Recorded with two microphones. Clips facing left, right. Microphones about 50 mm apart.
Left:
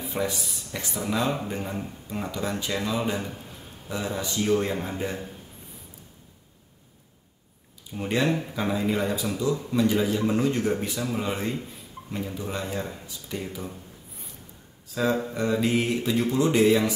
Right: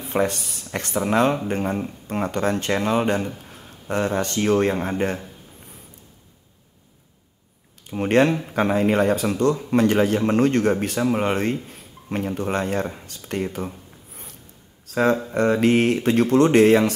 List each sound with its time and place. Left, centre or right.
0.0 s speech: right
7.8 s speech: right
14.9 s speech: right